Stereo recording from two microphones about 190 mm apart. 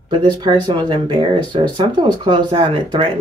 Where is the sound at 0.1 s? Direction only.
25° right (ahead or behind).